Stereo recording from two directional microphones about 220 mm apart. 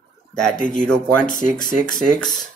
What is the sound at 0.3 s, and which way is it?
Speech, 5° left (ahead or behind).